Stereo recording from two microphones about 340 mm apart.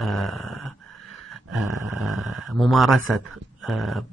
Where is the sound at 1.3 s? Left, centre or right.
Centre.